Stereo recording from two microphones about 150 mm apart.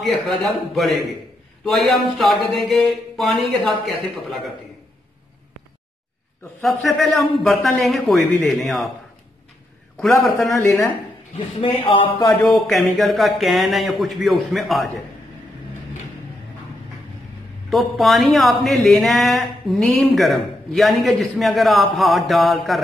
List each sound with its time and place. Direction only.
0.0 s speech: centre (ahead or behind)
6.6 s speech: centre (ahead or behind)
9.9 s speech: centre (ahead or behind)
10.5 s speech: 20° left (ahead or behind)
11.3 s a man's voice: 35° left (ahead or behind)
12.4 s speech: centre (ahead or behind)
17.6 s speech: centre (ahead or behind)